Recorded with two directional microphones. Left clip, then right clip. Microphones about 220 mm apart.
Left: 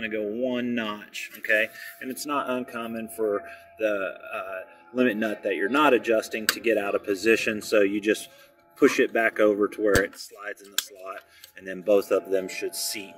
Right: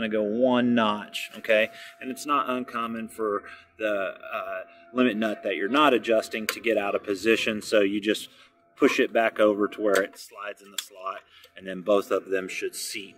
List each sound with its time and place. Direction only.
0.0 s speech: 15° right (ahead or behind)
2.0 s speech: 5° right (ahead or behind)
11.6 s speech: 5° right (ahead or behind)